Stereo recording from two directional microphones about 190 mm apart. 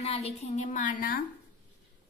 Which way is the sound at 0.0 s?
35° left (ahead or behind).